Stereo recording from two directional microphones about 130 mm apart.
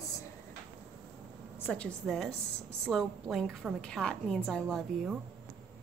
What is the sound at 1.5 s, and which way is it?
A woman's voice, 10° left (ahead or behind).